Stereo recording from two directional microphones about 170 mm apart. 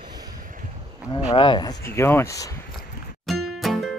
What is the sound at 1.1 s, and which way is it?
Speech, 30° left (ahead or behind).